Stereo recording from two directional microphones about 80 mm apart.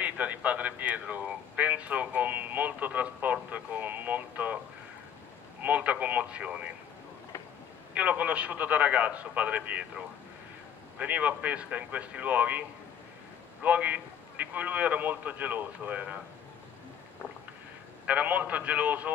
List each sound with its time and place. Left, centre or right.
0.0 s a sound: centre
5.6 s speech: centre
7.9 s a man's voice: centre
11.0 s a man's voice: centre
18.0 s a man's voice: centre